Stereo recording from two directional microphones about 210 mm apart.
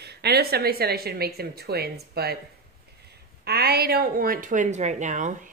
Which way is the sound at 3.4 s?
50° right (ahead or behind).